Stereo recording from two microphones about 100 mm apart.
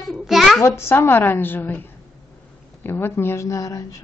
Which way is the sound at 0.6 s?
25° left (ahead or behind).